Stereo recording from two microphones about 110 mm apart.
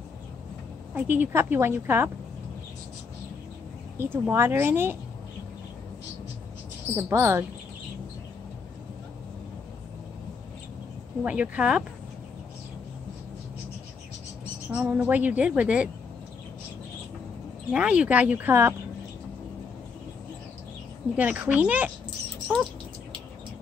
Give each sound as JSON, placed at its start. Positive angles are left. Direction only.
{"t": 0.9, "sound": "a woman's voice", "side_deg": -20}
{"t": 4.0, "sound": "a woman's voice", "side_deg": -20}
{"t": 7.0, "sound": "a woman's voice", "side_deg": -25}
{"t": 11.2, "sound": "a woman's voice", "side_deg": -10}
{"t": 14.7, "sound": "a woman's voice", "side_deg": -10}
{"t": 17.6, "sound": "a woman's voice", "side_deg": -10}
{"t": 21.2, "sound": "a woman's voice", "side_deg": -15}